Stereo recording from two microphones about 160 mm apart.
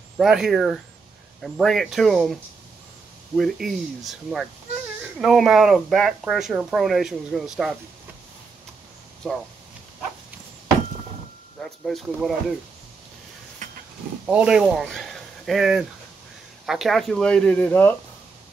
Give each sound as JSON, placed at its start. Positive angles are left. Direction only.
{"t": 0.2, "sound": "speech", "side_deg": 0}
{"t": 3.3, "sound": "speech", "side_deg": 0}
{"t": 9.2, "sound": "speech", "side_deg": 0}
{"t": 11.6, "sound": "speech", "side_deg": 0}
{"t": 13.6, "sound": "a sound", "side_deg": -55}
{"t": 14.2, "sound": "speech", "side_deg": -5}